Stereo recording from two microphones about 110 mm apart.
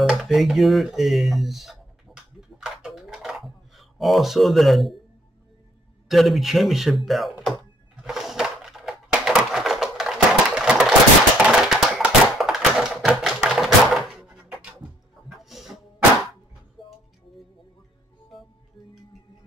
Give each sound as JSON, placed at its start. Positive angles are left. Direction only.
{"t": 0.0, "sound": "speech", "side_deg": -5}
{"t": 2.6, "sound": "a sound", "side_deg": -5}
{"t": 6.0, "sound": "a sound", "side_deg": 0}
{"t": 13.0, "sound": "typewriter", "side_deg": -5}
{"t": 15.2, "sound": "music", "side_deg": 0}
{"t": 16.8, "sound": "music", "side_deg": 50}